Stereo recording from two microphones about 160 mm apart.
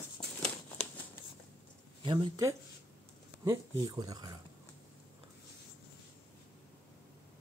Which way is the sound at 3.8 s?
25° right (ahead or behind).